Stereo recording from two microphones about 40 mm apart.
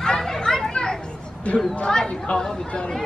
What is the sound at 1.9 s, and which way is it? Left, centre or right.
Speech, centre.